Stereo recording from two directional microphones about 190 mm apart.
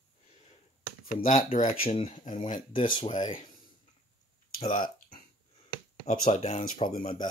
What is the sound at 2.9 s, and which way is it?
Speech, 25° left (ahead or behind).